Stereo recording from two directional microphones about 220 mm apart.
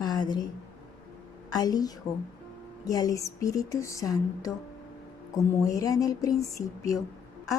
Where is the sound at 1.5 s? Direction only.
15° left (ahead or behind).